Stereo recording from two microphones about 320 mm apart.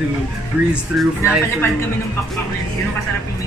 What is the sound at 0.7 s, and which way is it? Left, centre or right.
Speech, centre.